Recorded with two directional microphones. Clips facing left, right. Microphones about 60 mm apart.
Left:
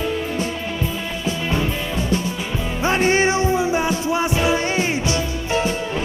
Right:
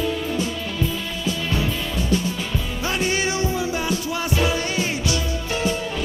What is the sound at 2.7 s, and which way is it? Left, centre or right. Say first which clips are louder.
Music: left 7 dB; left.